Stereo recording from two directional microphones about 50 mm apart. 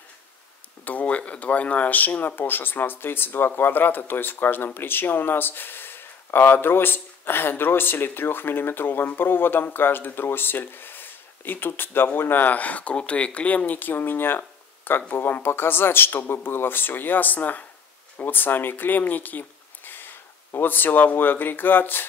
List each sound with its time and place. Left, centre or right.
0.8 s speech: left